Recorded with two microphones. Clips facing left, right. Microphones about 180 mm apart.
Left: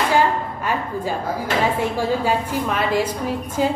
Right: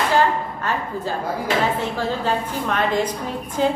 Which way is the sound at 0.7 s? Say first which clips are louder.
Left 2 dB; 10° left (ahead or behind).